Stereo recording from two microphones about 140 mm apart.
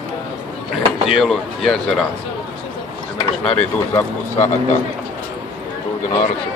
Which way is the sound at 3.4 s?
10° left (ahead or behind).